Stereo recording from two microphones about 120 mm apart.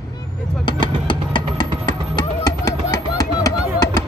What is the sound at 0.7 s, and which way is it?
Vehicle, 40° left (ahead or behind).